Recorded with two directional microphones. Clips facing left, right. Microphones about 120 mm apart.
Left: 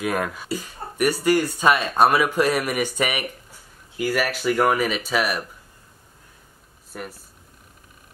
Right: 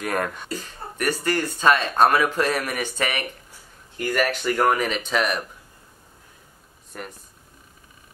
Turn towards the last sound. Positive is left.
turn(degrees=5)  # may be behind; listen again after turning